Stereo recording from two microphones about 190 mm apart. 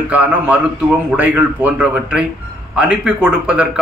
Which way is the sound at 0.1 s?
5° right (ahead or behind).